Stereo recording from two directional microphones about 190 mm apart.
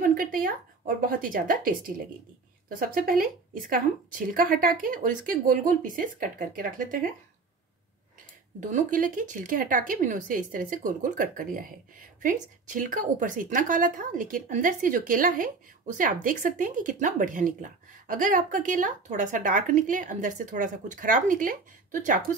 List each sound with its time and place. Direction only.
0.0 s a woman's voice: 45° right (ahead or behind)
8.5 s a woman's voice: 45° right (ahead or behind)